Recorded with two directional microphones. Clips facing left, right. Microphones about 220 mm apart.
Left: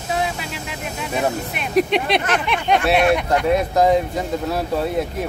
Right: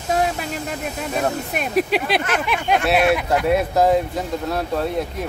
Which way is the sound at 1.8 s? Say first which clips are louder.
Left 3 dB; 5° right (ahead or behind).